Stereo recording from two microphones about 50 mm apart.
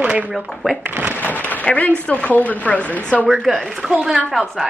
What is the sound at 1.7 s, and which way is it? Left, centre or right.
Speech, left.